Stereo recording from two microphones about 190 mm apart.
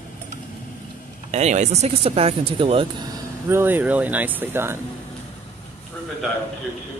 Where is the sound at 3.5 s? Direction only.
10° right (ahead or behind).